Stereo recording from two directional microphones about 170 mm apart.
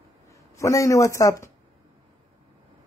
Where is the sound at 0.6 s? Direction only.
20° left (ahead or behind).